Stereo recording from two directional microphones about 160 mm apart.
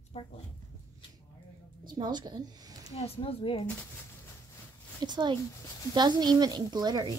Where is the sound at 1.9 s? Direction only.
25° right (ahead or behind).